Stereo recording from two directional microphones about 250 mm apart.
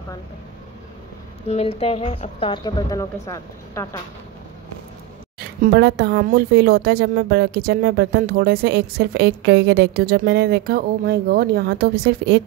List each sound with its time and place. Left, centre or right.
1.5 s a woman's voice: left
5.6 s a woman's voice: right